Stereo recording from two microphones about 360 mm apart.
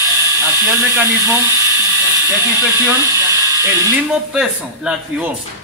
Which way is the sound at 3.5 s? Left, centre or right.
Centre.